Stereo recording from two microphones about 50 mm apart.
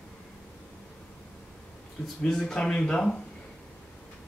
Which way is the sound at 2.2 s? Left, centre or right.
Centre.